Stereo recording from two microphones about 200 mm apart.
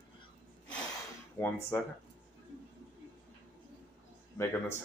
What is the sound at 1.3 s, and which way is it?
Speech, 10° left (ahead or behind).